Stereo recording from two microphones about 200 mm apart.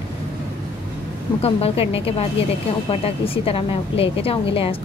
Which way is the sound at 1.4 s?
30° left (ahead or behind).